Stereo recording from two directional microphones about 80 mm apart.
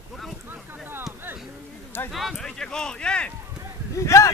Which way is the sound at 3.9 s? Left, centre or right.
Left.